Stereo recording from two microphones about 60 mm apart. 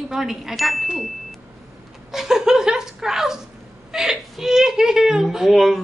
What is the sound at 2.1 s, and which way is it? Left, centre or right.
Chuckle, centre.